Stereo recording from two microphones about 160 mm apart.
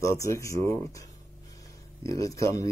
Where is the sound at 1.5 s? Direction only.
20° left (ahead or behind).